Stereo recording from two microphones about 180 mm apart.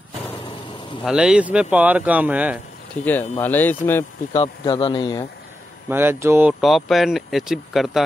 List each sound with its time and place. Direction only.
1.0 s speech: 5° right (ahead or behind)
3.1 s speech: 10° left (ahead or behind)
4.3 s speech: 30° left (ahead or behind)
5.9 s speech: 10° right (ahead or behind)
6.6 s speech: centre (ahead or behind)